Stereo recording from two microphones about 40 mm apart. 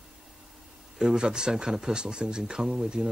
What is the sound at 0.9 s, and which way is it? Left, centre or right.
Speech, centre.